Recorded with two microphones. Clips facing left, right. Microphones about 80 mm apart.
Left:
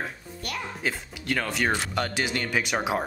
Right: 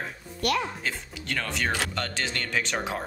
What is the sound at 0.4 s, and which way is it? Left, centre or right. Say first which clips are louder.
Speech: right 9 dB; right.